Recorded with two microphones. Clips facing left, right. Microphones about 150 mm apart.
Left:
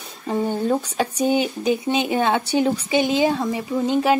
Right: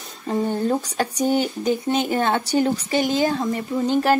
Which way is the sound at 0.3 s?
Centre (ahead or behind).